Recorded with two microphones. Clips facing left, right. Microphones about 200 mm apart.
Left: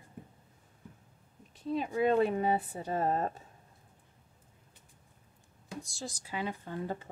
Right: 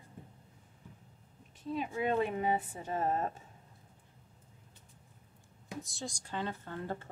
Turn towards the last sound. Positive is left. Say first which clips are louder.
# left 2 dB
turn(degrees=15)  # may be behind; listen again after turning